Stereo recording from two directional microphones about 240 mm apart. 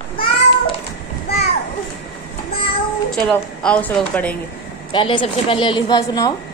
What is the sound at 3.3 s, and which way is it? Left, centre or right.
A woman's voice, centre.